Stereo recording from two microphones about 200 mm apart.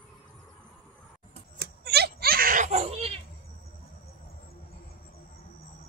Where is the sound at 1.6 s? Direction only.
55° right (ahead or behind); by 3.1 s 30° right (ahead or behind).